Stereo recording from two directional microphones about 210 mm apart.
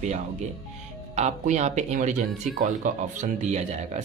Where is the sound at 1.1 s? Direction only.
35° right (ahead or behind).